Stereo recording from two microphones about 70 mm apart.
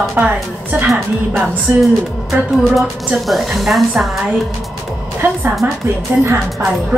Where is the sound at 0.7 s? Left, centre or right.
Right.